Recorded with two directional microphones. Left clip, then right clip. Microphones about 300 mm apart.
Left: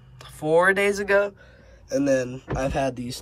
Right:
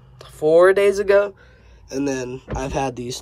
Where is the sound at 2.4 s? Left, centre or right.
Centre.